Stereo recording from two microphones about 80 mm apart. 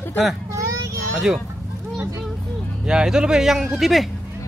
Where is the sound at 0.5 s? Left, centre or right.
Right.